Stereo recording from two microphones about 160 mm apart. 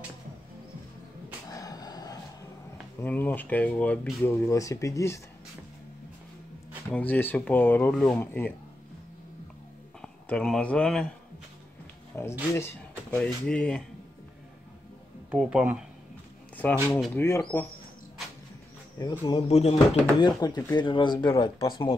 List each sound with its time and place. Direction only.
1.5 s a sound: 20° left (ahead or behind)
3.0 s speech: 10° left (ahead or behind)
6.9 s speech: 10° left (ahead or behind)
10.0 s speech: 5° left (ahead or behind)
12.1 s speech: 15° left (ahead or behind)
15.3 s speech: 5° right (ahead or behind)
17.1 s speech: 15° left (ahead or behind)
18.9 s speech: 30° left (ahead or behind)
20.2 s speech: 25° left (ahead or behind)